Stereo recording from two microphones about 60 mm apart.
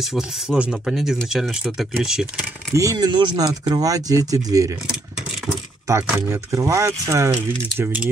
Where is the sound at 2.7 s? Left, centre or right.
Right.